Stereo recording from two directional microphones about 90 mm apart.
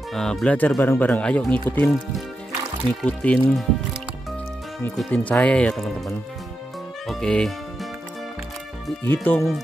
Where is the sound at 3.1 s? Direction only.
15° left (ahead or behind).